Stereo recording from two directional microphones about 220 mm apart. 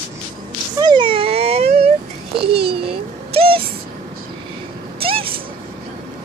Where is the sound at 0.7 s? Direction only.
20° right (ahead or behind).